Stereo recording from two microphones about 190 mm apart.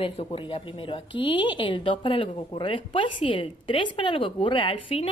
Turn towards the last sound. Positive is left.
turn(degrees=30)  # may be behind; listen again after turning